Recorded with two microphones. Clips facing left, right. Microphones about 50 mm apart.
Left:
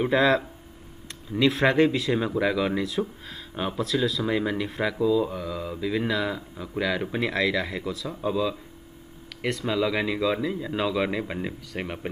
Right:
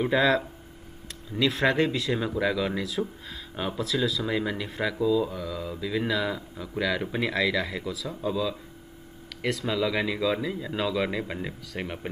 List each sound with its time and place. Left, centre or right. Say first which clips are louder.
0.0 s speech: left 2 dB; centre
8.1 s speech: left 2 dB; centre